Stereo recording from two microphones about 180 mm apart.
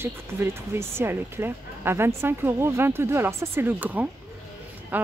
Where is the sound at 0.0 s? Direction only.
15° right (ahead or behind).